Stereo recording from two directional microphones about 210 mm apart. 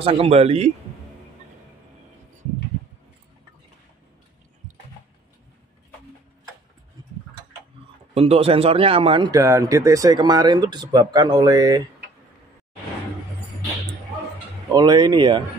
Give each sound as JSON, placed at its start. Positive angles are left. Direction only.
{"t": 0.0, "sound": "speech", "side_deg": -25}
{"t": 8.1, "sound": "speech", "side_deg": -30}
{"t": 14.7, "sound": "speech", "side_deg": -20}